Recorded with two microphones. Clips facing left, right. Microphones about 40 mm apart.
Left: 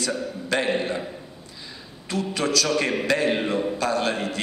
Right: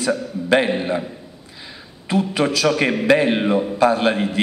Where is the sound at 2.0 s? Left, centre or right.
Right.